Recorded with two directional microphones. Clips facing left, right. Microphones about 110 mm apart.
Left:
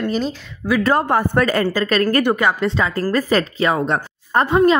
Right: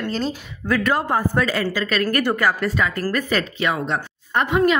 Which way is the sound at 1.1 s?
60° left (ahead or behind).